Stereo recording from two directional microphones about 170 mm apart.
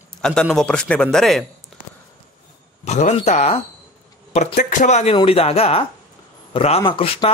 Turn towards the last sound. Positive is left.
turn(degrees=30)  # may be behind; listen again after turning